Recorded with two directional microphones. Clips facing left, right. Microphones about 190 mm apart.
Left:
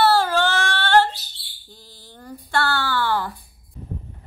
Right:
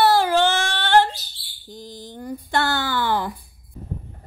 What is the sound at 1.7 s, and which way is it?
Speech, 15° right (ahead or behind).